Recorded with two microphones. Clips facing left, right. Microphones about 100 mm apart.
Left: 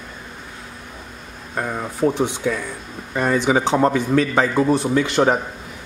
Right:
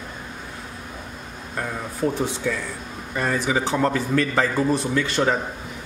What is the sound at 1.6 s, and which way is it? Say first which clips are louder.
A man's voice: left 4 dB; 20° left (ahead or behind).